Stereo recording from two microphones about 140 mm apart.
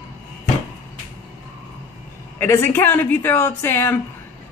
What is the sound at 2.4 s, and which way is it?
Speech, 15° left (ahead or behind).